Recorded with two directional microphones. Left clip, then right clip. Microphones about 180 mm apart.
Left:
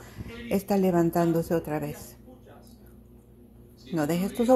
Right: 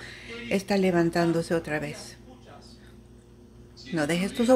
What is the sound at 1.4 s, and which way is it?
Speech, 10° left (ahead or behind).